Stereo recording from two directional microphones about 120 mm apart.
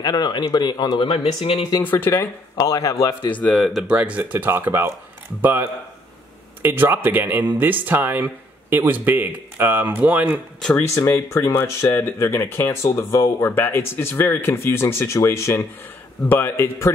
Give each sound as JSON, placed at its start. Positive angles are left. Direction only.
{"t": 0.0, "sound": "speech", "side_deg": 35}
{"t": 1.2, "sound": "speech", "side_deg": 55}
{"t": 1.8, "sound": "speech", "side_deg": 15}
{"t": 2.5, "sound": "speech", "side_deg": 30}
{"t": 3.3, "sound": "speech", "side_deg": 5}
{"t": 11.0, "sound": "speech", "side_deg": 25}